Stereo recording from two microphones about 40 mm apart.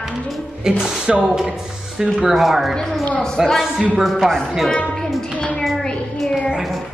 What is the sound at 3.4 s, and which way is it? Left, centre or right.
Speech, centre.